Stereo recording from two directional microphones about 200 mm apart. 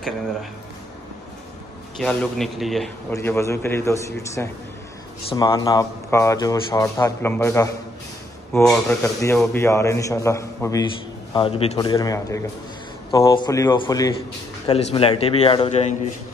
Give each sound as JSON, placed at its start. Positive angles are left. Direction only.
{"t": 2.0, "sound": "speech", "side_deg": 0}
{"t": 3.1, "sound": "speech", "side_deg": 15}
{"t": 8.6, "sound": "speech", "side_deg": 0}
{"t": 11.3, "sound": "a man's voice", "side_deg": 30}
{"t": 14.7, "sound": "a man's voice", "side_deg": 30}